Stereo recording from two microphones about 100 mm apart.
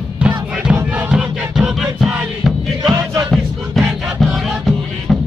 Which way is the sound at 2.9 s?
40° right (ahead or behind).